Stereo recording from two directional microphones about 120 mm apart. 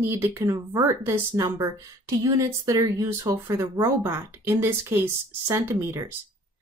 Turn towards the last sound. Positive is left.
turn(degrees=-20)  # may be behind; listen again after turning